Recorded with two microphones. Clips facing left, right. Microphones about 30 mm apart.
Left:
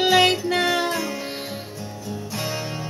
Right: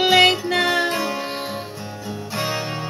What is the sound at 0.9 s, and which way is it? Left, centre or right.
Music, right.